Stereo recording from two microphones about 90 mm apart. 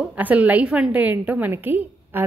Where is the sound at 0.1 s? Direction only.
15° right (ahead or behind).